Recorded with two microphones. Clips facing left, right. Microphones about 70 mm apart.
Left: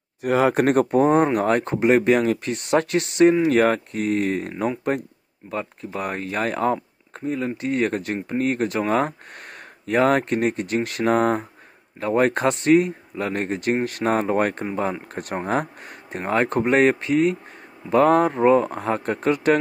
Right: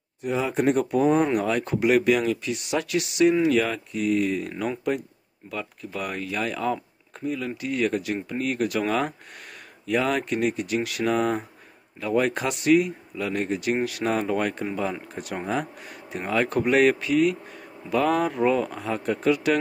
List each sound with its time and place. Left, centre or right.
0.2 s speech: left
0.9 s speech: left